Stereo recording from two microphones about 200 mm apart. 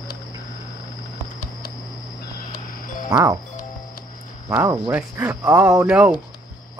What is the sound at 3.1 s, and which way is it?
Speech, 15° right (ahead or behind).